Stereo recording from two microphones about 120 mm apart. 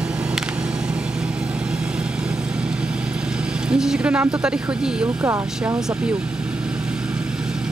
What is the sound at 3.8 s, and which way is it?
Speech, 10° right (ahead or behind).